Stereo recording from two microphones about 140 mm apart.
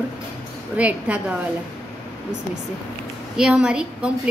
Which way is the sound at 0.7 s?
10° right (ahead or behind).